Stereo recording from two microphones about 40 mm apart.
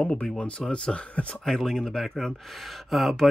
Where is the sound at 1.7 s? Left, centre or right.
Centre.